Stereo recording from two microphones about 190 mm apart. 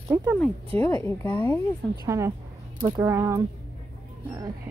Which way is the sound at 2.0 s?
15° right (ahead or behind).